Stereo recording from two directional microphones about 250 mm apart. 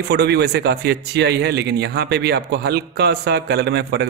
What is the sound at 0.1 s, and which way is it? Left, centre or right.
A man's voice, right.